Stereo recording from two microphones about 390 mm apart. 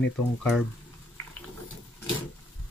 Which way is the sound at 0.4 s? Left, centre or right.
Centre.